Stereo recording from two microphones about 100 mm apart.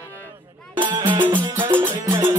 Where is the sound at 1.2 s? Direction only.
20° right (ahead or behind).